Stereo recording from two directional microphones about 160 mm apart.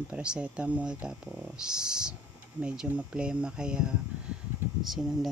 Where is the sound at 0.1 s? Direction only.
5° right (ahead or behind).